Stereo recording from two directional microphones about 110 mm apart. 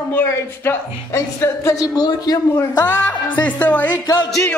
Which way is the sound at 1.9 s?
35° left (ahead or behind).